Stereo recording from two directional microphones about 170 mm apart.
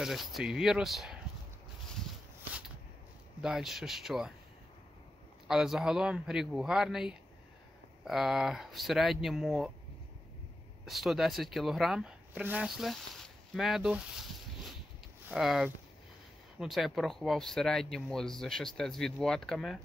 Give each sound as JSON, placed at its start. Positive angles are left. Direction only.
{"t": 0.0, "sound": "speech", "side_deg": 0}
{"t": 3.3, "sound": "speech", "side_deg": -5}
{"t": 5.5, "sound": "speech", "side_deg": -5}
{"t": 10.9, "sound": "speech", "side_deg": 0}